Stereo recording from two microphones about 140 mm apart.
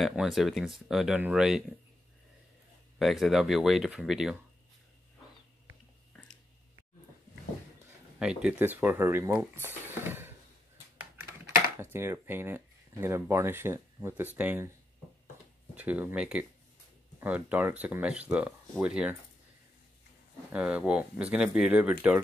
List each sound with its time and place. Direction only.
0.0 s speech: centre (ahead or behind)
3.0 s speech: centre (ahead or behind)
8.2 s speech: 5° right (ahead or behind)
11.8 s speech: 20° right (ahead or behind)
15.7 s speech: 10° right (ahead or behind)
20.5 s speech: 10° right (ahead or behind)